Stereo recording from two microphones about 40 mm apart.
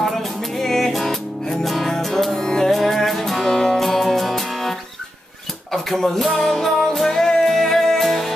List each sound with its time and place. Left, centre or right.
0.0 s music: centre
6.3 s music: centre